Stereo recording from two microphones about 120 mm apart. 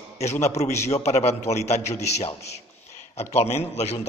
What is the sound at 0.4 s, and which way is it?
A man's voice, 65° left (ahead or behind).